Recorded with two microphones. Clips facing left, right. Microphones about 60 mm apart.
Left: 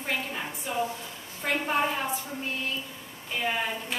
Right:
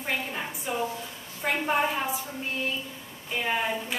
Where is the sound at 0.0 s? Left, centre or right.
Centre.